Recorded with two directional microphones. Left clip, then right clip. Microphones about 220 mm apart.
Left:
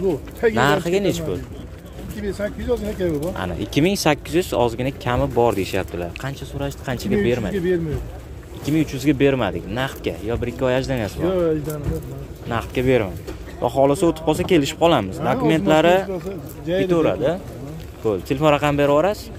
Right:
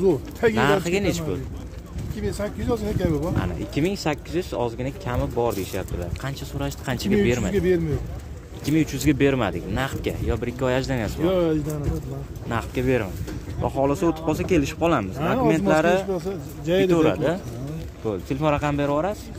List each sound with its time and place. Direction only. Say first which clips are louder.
0.0 s speech: even; 45° right (ahead or behind)
0.6 s speech: left 3 dB; 10° left (ahead or behind)
2.2 s speech: left 3 dB; 40° right (ahead or behind)
3.3 s speech: left 5 dB; 15° left (ahead or behind)
6.2 s speech: left 2 dB; centre (ahead or behind)
7.5 s speech: even; 45° right (ahead or behind)
8.6 s speech: left 2 dB; centre (ahead or behind)
11.2 s speech: left 1 dB; 45° right (ahead or behind)
12.4 s speech: left 4 dB; 5° left (ahead or behind)
16.6 s a man's voice: right 1 dB; 50° right (ahead or behind)
16.9 s speech: left 2 dB; 5° right (ahead or behind)
18.0 s speech: left 6 dB; 10° left (ahead or behind)